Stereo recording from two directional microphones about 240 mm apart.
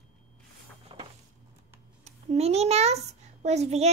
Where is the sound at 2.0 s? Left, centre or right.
Right.